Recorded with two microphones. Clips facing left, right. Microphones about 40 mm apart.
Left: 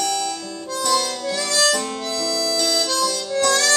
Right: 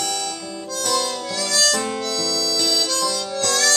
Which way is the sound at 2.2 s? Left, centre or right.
Centre.